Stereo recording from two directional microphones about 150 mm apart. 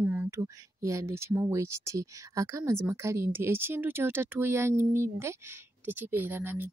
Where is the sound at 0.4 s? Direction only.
20° right (ahead or behind).